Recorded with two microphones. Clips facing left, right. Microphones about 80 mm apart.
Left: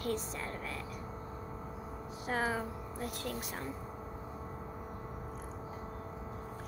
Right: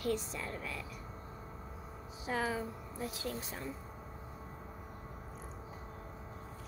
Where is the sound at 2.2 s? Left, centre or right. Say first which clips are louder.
Left 1 dB; left.